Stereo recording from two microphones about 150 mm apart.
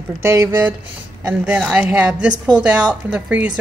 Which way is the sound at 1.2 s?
5° right (ahead or behind).